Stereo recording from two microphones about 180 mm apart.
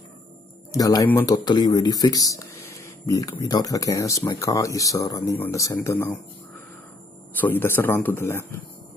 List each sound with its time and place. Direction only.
0.7 s speech: 20° left (ahead or behind)
7.3 s speech: 10° left (ahead or behind)